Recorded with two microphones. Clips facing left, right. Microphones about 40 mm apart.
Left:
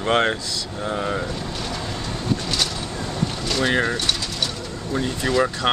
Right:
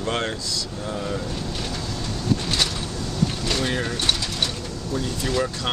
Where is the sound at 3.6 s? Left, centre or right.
Left.